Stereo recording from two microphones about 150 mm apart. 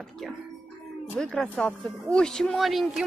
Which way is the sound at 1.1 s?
5° left (ahead or behind).